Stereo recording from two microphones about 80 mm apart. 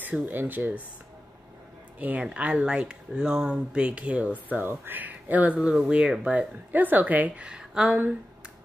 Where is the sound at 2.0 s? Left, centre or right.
Centre.